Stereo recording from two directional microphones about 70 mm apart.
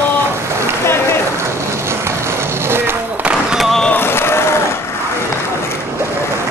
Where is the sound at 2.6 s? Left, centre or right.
Right.